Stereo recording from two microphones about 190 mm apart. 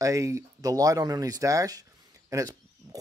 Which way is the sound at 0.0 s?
15° right (ahead or behind).